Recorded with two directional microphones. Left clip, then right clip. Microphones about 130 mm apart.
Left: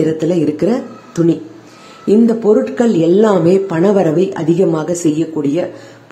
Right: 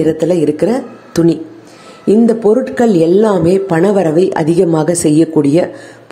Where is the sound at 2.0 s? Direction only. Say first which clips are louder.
Right 2 dB; 20° right (ahead or behind).